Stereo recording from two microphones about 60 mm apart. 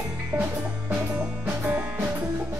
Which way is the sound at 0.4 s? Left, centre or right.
Right.